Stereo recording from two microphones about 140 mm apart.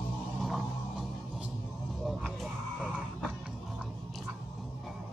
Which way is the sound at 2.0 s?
Centre (ahead or behind).